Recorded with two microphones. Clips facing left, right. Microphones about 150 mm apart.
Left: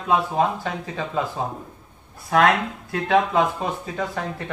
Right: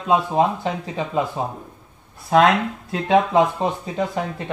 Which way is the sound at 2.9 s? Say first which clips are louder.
Right 2 dB; 25° right (ahead or behind).